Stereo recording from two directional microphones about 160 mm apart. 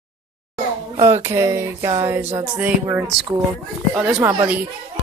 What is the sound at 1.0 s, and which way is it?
Speech, 20° right (ahead or behind).